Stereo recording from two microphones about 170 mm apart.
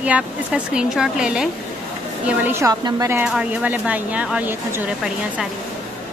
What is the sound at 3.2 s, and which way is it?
A woman's voice, 5° right (ahead or behind).